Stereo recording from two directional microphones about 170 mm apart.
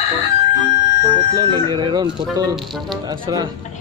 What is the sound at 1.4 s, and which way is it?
Speech, 25° right (ahead or behind).